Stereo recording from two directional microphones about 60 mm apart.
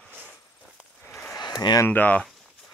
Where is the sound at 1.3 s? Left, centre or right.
Left.